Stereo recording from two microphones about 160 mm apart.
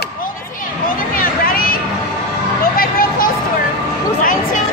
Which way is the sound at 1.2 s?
65° left (ahead or behind).